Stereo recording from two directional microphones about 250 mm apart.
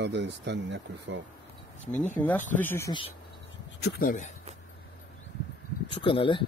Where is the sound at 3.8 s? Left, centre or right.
Left.